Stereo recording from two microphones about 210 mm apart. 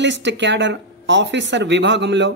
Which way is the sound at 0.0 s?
60° right (ahead or behind).